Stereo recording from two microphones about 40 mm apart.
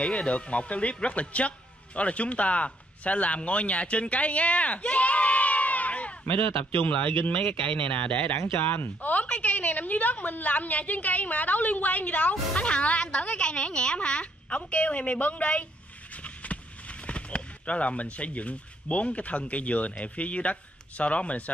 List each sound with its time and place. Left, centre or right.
0.0 s a woman's voice: left
6.6 s speech: left
6.9 s a woman's voice: left
8.5 s speech: left
9.1 s a woman's voice: left